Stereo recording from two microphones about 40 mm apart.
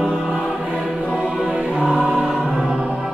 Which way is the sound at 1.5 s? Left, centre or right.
Right.